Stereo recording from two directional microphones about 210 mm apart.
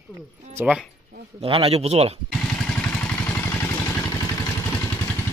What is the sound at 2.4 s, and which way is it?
Vehicle, 5° left (ahead or behind).